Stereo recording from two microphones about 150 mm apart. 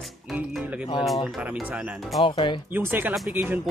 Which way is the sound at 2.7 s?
15° right (ahead or behind).